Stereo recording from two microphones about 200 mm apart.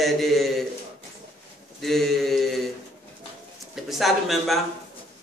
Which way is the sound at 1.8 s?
Centre (ahead or behind).